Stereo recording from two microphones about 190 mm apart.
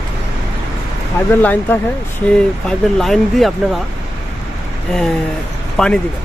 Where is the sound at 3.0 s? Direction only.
Centre (ahead or behind).